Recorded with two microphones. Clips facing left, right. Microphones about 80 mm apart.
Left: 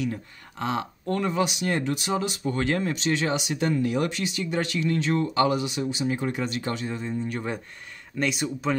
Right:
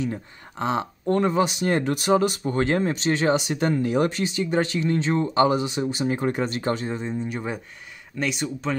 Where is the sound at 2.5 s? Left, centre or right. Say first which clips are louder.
Right 1 dB; right.